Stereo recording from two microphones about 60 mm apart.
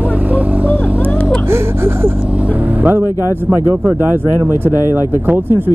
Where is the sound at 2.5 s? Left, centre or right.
Right.